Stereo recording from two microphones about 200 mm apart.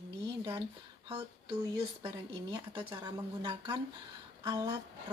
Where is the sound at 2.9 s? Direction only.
20° right (ahead or behind).